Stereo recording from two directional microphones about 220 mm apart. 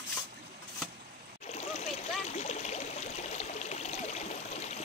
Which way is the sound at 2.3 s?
30° left (ahead or behind).